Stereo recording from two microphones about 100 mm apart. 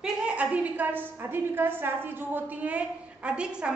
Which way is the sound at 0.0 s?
15° right (ahead or behind).